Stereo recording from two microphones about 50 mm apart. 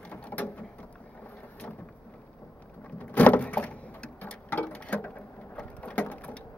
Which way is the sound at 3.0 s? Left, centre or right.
Left.